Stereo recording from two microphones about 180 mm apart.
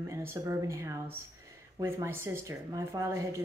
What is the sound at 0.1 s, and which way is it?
Speech, 15° right (ahead or behind).